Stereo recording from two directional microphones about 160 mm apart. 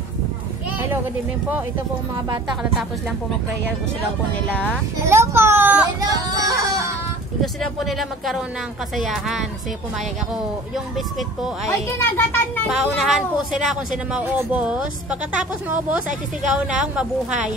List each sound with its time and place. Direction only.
5.0 s a sound: 15° right (ahead or behind)
5.9 s music: 20° right (ahead or behind)
7.6 s speech: centre (ahead or behind)
11.1 s speech: centre (ahead or behind)
12.0 s speech: 15° left (ahead or behind)
12.6 s speech: centre (ahead or behind)
16.5 s speech: 5° right (ahead or behind)